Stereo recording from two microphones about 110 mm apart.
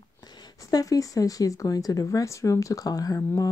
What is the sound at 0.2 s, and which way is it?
A woman's voice, 40° left (ahead or behind).